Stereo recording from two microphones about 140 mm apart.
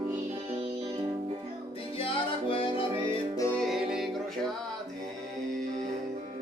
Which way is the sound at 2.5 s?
40° left (ahead or behind).